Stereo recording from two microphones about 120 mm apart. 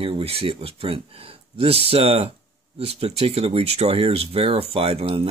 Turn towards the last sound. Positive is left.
turn(degrees=-55)  # may be behind; listen again after turning